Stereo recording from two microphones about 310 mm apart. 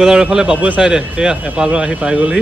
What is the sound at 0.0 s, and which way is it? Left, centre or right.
A man's voice, centre.